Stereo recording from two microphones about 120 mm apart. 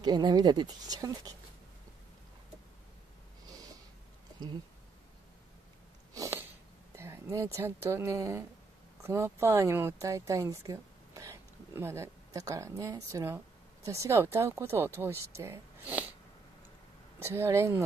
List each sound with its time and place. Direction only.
0.0 s speech: 35° right (ahead or behind)
6.1 s sneeze: 25° right (ahead or behind)
7.0 s speech: 20° right (ahead or behind)
17.2 s speech: 20° right (ahead or behind)